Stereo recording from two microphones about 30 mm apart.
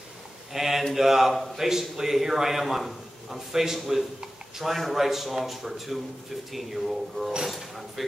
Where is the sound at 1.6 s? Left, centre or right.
Centre.